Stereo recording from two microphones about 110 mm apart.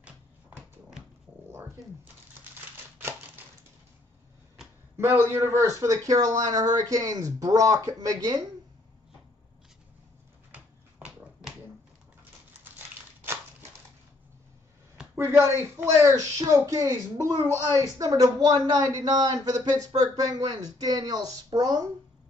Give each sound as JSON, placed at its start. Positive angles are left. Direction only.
{"t": 3.0, "sound": "typewriter", "side_deg": -20}
{"t": 4.9, "sound": "a man's voice", "side_deg": -25}
{"t": 12.7, "sound": "a sound", "side_deg": -20}
{"t": 15.1, "sound": "speech", "side_deg": -25}